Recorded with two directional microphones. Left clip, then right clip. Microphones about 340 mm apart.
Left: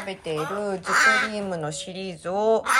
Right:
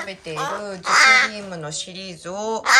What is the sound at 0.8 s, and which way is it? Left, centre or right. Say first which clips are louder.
Speech: right 6 dB; right.